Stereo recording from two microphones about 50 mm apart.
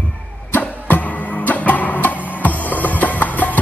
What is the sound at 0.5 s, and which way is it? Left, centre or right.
Music, left.